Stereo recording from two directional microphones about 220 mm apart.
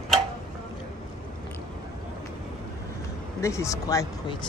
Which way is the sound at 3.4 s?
15° left (ahead or behind).